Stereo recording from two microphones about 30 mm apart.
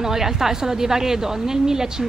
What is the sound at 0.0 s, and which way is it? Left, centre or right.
A woman's voice, centre.